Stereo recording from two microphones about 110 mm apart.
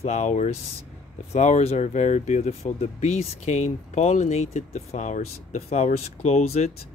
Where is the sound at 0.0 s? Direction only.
90° left.